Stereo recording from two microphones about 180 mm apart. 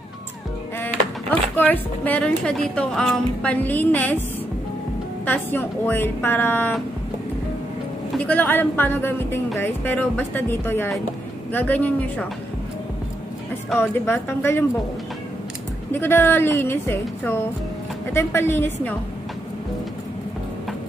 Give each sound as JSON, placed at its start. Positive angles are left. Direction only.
{"t": 1.6, "sound": "a woman's voice", "side_deg": 10}
{"t": 5.2, "sound": "a woman's voice", "side_deg": 10}
{"t": 8.2, "sound": "a woman's voice", "side_deg": 10}
{"t": 13.7, "sound": "a woman's voice", "side_deg": 15}
{"t": 15.9, "sound": "a woman's voice", "side_deg": 10}